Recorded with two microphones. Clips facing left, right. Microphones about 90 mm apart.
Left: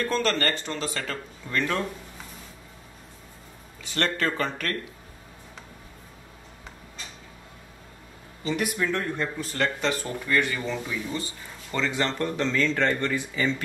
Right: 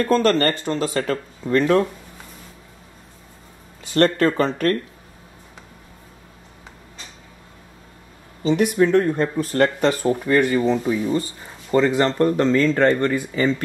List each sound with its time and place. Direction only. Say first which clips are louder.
0.0 s speech: right 8 dB; 45° right (ahead or behind)
3.8 s speech: right 10 dB; 40° right (ahead or behind)
8.5 s speech: right 10 dB; 25° right (ahead or behind); by 13.5 s 45° right (ahead or behind)